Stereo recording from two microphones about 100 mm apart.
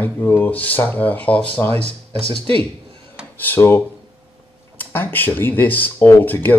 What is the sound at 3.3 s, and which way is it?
Speech, 20° left (ahead or behind).